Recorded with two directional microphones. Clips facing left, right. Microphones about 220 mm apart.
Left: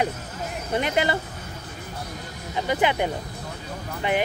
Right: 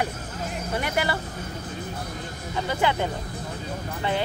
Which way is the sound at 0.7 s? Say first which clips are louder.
Left 4 dB; 20° left (ahead or behind).